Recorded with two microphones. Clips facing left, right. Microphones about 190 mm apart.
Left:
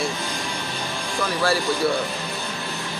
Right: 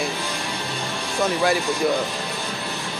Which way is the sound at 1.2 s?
20° right (ahead or behind).